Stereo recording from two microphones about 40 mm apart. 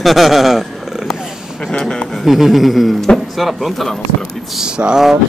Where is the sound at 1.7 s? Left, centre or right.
Centre.